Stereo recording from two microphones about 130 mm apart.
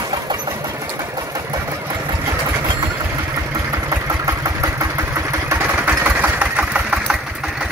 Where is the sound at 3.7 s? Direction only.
25° right (ahead or behind).